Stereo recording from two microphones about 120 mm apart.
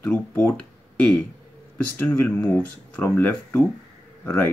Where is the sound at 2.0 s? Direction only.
15° left (ahead or behind).